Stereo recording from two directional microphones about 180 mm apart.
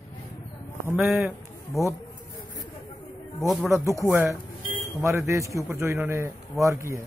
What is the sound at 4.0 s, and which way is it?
A man's voice, 15° right (ahead or behind).